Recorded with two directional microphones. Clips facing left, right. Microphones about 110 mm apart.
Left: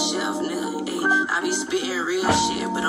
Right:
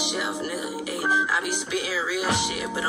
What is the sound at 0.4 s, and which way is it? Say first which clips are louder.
Music: left 5 dB; 40° left (ahead or behind).